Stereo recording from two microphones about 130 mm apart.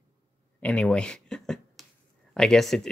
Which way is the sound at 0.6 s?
10° left (ahead or behind).